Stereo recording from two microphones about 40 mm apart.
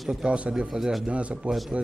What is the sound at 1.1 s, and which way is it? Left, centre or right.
Speech, right.